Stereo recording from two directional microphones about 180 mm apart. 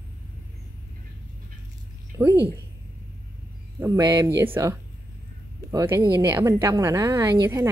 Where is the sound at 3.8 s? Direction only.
15° right (ahead or behind).